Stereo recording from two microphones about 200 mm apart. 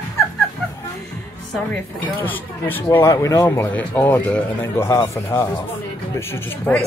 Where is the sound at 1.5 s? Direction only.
10° left (ahead or behind).